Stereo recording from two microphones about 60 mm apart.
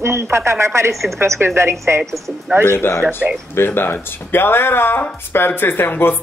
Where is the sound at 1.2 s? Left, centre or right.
Right.